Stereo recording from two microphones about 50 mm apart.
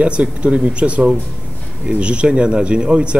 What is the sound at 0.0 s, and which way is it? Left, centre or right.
Speech, right.